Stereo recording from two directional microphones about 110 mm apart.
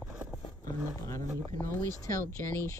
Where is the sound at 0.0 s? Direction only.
10° right (ahead or behind).